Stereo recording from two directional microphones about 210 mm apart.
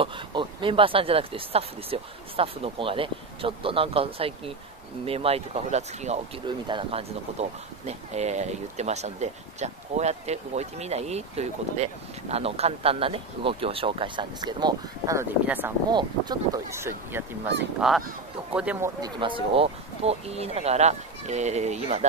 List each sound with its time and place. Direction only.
0.0 s speech: 25° right (ahead or behind)
15.9 s speech: 20° right (ahead or behind)
17.7 s goose: centre (ahead or behind)
18.5 s speech: 5° right (ahead or behind)
18.9 s speech: 20° right (ahead or behind)